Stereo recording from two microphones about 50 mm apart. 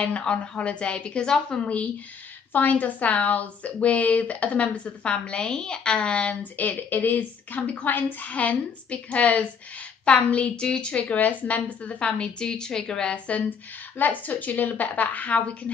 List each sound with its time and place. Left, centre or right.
0.2 s a woman's voice: centre